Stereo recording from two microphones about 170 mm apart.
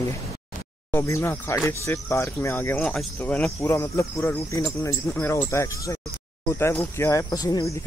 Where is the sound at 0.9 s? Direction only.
15° left (ahead or behind).